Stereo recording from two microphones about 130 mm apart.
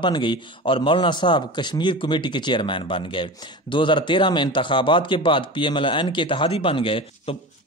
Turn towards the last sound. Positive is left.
turn(degrees=45)  # may be behind; listen again after turning